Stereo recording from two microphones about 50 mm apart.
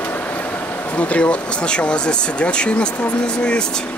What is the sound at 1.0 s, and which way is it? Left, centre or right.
Speech, left.